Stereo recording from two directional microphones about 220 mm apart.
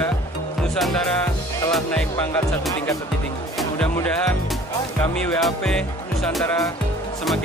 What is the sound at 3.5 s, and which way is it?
Music, 5° left (ahead or behind).